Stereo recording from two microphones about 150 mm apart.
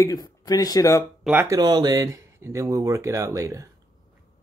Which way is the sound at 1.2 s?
10° right (ahead or behind).